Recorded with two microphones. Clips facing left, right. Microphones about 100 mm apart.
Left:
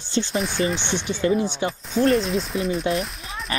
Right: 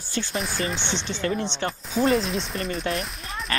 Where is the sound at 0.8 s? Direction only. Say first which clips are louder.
Left 5 dB; 10° left (ahead or behind).